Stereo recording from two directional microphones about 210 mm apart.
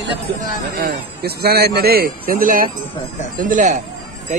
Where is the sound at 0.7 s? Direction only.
45° right (ahead or behind).